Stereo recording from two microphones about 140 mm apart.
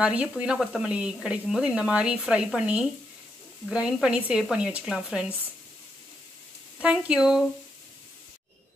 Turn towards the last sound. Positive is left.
turn(degrees=-5)  # may be behind; listen again after turning